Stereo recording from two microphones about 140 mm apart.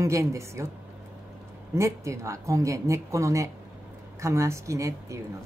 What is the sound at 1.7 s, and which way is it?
A woman's voice, 20° right (ahead or behind).